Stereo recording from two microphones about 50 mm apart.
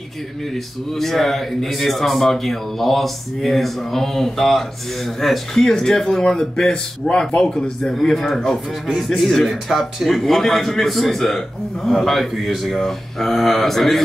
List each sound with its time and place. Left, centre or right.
0.9 s speech: centre
6.2 s speech: centre
7.9 s speech: centre